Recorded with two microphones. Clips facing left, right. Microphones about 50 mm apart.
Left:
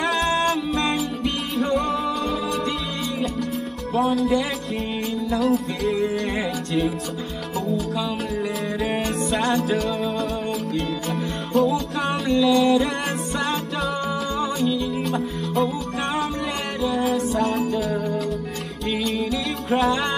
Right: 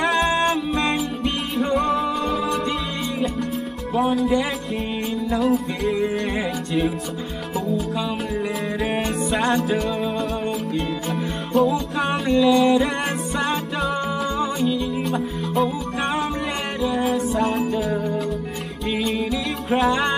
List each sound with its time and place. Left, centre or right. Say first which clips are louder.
0.0 s music: right 2 dB; centre
3.9 s music: right 1 dB; centre
5.9 s music: even; centre
17.3 s music: right 1 dB; centre
17.7 s music: right 1 dB; centre